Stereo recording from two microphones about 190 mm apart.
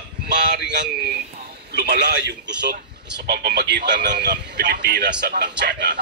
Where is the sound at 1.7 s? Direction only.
60° right (ahead or behind).